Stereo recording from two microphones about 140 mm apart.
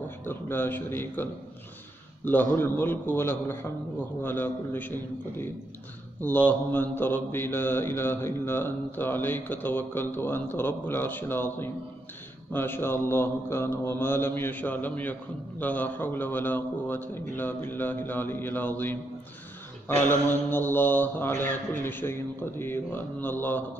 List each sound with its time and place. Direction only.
0.2 s mantra: 15° left (ahead or behind)
20.1 s mantra: 15° left (ahead or behind)